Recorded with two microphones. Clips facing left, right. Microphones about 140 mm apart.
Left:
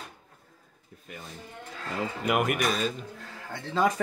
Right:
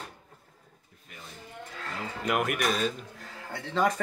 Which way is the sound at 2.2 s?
5° left (ahead or behind).